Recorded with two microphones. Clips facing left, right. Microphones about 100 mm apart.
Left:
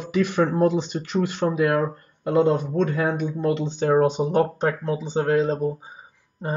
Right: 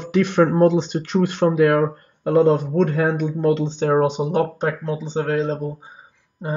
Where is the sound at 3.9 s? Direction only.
15° right (ahead or behind).